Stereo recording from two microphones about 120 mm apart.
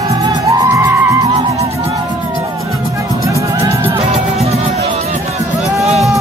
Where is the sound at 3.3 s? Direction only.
25° right (ahead or behind).